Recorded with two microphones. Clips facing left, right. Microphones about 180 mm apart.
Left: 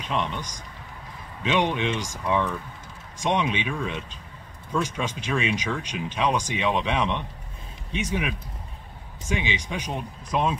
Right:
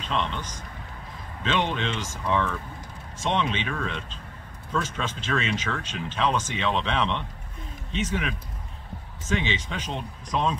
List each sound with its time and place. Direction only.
0.0 s speech: 15° left (ahead or behind)